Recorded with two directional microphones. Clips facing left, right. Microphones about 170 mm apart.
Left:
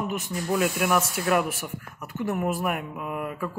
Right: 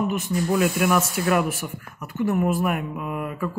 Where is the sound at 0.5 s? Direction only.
20° left (ahead or behind).